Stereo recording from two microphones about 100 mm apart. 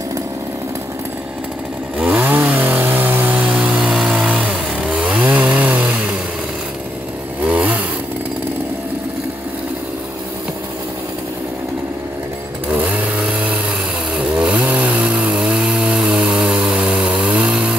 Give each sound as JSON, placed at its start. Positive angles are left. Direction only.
{"t": 2.0, "sound": "chainsaw", "side_deg": -15}
{"t": 7.4, "sound": "motorcycle", "side_deg": -15}
{"t": 12.6, "sound": "vehicle", "side_deg": -15}
{"t": 14.1, "sound": "chainsaw", "side_deg": -10}